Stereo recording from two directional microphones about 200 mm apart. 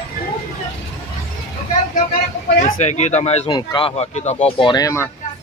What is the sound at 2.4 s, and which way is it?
Speech, 40° left (ahead or behind).